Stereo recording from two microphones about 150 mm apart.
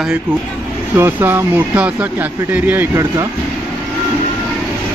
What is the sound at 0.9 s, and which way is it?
Speech, 15° right (ahead or behind).